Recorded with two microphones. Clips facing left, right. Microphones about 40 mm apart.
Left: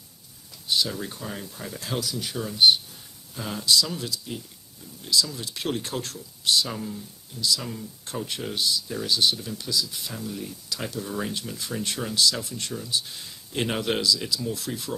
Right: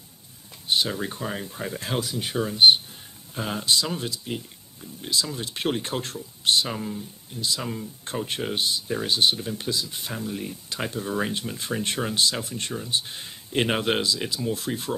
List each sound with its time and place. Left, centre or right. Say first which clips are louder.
0.7 s speech: right 2 dB; right
6.7 s speech: right 2 dB; right
7.3 s speech: left 1 dB; right